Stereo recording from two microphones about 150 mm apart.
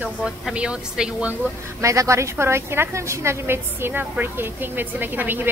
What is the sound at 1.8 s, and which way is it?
A woman's voice, 20° right (ahead or behind).